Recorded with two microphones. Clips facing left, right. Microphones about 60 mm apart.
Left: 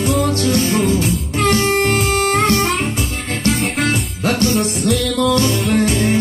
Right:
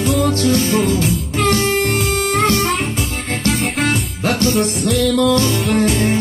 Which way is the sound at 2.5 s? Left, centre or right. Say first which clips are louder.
Left 1 dB; left.